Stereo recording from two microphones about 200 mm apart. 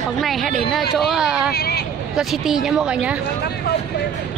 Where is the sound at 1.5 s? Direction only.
55° left (ahead or behind).